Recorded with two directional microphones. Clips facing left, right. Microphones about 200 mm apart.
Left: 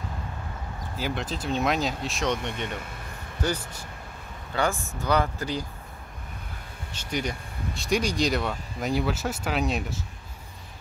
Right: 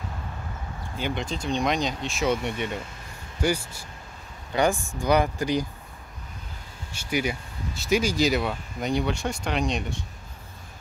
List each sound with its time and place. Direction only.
0.9 s speech: centre (ahead or behind); by 5.7 s 15° right (ahead or behind)
6.9 s speech: 10° right (ahead or behind)